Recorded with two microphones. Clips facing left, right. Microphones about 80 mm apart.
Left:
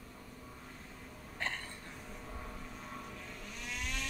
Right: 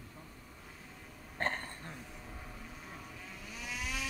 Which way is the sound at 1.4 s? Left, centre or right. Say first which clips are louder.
Right 4 dB; right.